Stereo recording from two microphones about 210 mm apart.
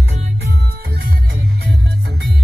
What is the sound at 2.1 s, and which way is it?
Music, 50° right (ahead or behind).